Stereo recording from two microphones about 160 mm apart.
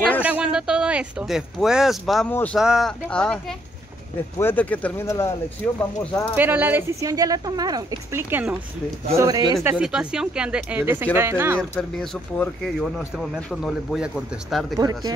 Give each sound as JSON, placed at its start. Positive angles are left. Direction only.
{"t": 0.2, "sound": "speech", "side_deg": -5}
{"t": 6.3, "sound": "speech", "side_deg": -10}
{"t": 12.0, "sound": "speech", "side_deg": 5}
{"t": 14.8, "sound": "speech", "side_deg": -25}